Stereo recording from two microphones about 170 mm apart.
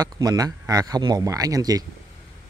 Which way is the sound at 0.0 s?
20° right (ahead or behind).